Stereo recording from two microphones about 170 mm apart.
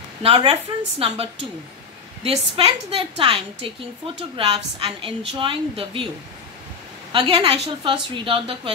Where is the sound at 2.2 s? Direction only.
30° right (ahead or behind).